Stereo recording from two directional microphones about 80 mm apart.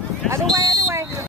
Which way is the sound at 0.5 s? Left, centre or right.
Right.